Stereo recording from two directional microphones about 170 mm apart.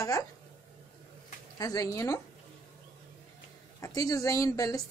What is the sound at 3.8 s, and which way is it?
A woman's voice, 20° left (ahead or behind).